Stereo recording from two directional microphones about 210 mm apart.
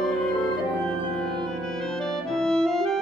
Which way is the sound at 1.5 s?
5° left (ahead or behind).